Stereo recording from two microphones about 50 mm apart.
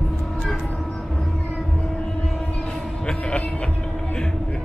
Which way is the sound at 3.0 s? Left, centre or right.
Centre.